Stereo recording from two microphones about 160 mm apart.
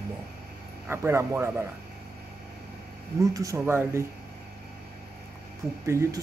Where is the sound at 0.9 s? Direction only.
15° right (ahead or behind).